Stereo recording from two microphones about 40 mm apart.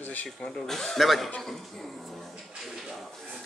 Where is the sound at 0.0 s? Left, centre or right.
Left.